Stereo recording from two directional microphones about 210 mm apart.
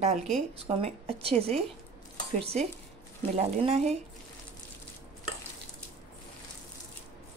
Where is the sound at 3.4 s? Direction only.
30° right (ahead or behind).